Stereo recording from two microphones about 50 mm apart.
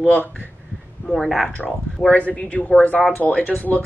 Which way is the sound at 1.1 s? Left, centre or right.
Centre.